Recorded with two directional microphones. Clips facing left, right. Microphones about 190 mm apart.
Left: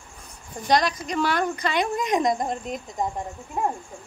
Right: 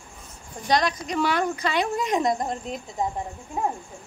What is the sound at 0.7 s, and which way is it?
Speech, centre (ahead or behind).